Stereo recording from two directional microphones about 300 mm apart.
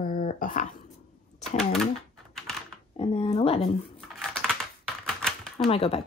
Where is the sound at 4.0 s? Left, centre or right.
Centre.